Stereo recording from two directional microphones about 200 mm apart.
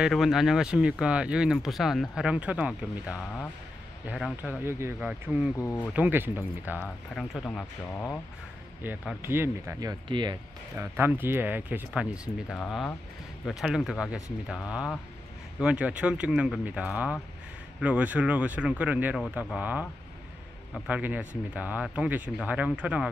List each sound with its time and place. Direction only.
0.0 s speech: centre (ahead or behind)
5.6 s speech: 10° left (ahead or behind)
5.9 s speech: 10° right (ahead or behind)
6.8 s speech: 5° left (ahead or behind)
8.8 s speech: 10° right (ahead or behind)
10.8 s speech: 10° right (ahead or behind)
12.5 s speech: 5° left (ahead or behind)